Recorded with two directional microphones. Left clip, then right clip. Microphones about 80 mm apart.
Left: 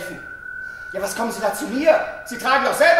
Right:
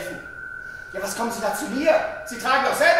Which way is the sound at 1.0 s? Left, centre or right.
Centre.